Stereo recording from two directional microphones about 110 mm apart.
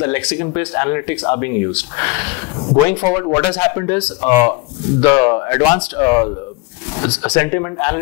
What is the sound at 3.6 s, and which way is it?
Speech, 25° left (ahead or behind).